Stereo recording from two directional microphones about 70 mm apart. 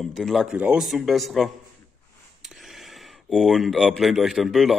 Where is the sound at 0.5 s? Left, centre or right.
Centre.